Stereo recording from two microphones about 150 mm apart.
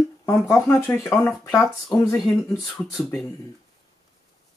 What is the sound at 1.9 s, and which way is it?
Speech, 20° left (ahead or behind).